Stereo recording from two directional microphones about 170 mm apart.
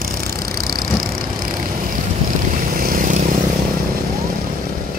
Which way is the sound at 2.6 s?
55° right (ahead or behind).